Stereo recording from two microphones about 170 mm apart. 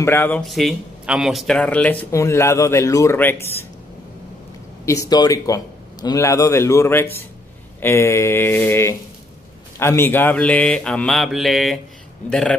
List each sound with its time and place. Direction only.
0.0 s speech: 15° left (ahead or behind)
0.5 s speech: centre (ahead or behind)
4.8 s speech: 20° left (ahead or behind); by 12.5 s 5° left (ahead or behind)